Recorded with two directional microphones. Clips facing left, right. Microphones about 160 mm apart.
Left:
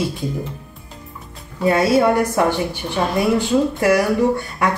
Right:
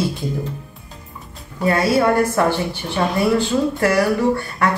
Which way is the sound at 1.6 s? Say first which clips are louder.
Left 2 dB; 20° left (ahead or behind).